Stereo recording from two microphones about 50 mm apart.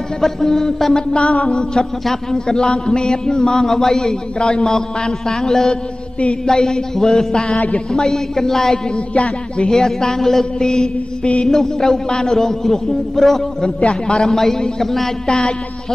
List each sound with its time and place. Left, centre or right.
0.2 s a sound: centre
1.1 s music: left
2.0 s a man's voice: centre
7.5 s music: left
7.9 s a man's voice: centre
8.9 s music: left
9.7 s a man's voice: centre
13.7 s a man's voice: left
15.2 s a man's voice: centre